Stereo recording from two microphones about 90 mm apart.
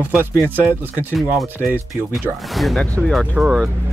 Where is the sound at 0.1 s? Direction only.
20° right (ahead or behind).